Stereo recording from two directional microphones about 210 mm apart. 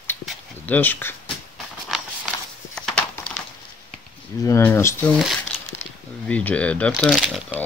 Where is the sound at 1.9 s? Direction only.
Centre (ahead or behind).